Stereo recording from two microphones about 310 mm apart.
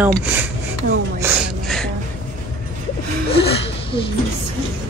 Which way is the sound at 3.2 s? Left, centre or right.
Centre.